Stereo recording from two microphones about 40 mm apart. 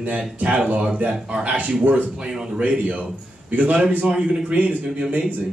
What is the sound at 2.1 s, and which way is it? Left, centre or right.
Speech, right.